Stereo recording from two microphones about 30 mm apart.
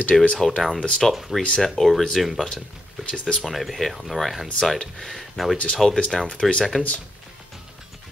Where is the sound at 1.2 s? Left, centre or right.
Centre.